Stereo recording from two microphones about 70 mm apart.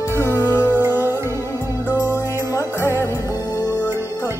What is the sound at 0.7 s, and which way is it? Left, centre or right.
Music, right.